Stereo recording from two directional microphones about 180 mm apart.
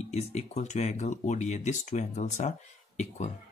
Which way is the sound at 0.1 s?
35° left (ahead or behind).